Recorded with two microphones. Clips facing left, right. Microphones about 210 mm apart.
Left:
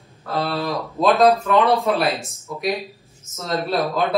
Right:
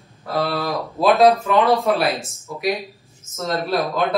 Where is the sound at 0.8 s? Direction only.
Centre (ahead or behind).